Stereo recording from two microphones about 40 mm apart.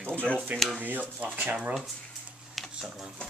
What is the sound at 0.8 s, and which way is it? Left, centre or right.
Speech, right.